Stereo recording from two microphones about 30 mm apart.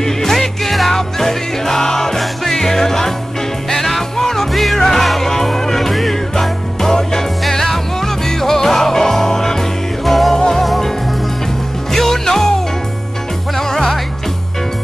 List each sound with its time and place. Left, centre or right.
0.0 s music: centre
6.8 s music: centre
10.3 s music: centre
11.9 s music: centre
13.6 s music: centre